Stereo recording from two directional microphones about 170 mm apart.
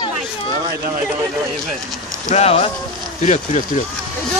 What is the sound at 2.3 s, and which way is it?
Speech, 35° left (ahead or behind).